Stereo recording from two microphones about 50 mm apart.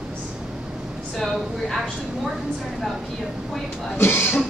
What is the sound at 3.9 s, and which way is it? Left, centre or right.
Speech, left.